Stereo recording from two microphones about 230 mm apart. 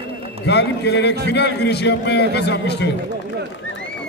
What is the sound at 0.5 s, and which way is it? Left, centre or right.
A man's voice, left.